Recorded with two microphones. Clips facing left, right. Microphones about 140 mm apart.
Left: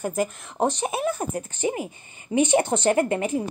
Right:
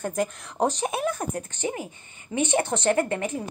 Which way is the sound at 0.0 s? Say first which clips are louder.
Left 1 dB; 5° left (ahead or behind).